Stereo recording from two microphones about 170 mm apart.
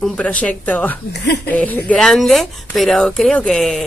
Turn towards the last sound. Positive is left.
turn(degrees=0)  # may be behind; listen again after turning